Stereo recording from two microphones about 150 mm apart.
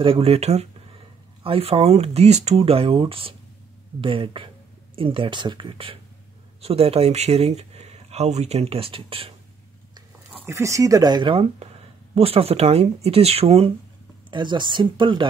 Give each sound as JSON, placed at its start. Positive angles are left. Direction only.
{"t": 0.0, "sound": "speech", "side_deg": -40}
{"t": 10.4, "sound": "speech", "side_deg": -20}
{"t": 14.3, "sound": "speech", "side_deg": -30}